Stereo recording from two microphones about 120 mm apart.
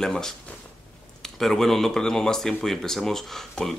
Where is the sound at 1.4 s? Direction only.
Centre (ahead or behind).